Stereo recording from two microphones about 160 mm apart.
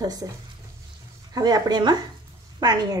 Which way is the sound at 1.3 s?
25° right (ahead or behind).